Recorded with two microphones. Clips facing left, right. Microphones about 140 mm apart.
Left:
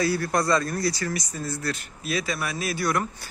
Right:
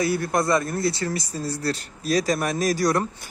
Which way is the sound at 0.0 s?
20° right (ahead or behind).